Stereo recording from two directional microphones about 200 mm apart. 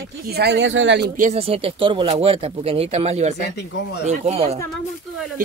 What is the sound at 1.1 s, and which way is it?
Speech, 35° right (ahead or behind).